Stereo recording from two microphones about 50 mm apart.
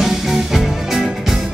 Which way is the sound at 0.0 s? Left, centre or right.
Centre.